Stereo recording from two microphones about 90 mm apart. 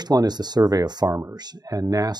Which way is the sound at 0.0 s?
50° right (ahead or behind).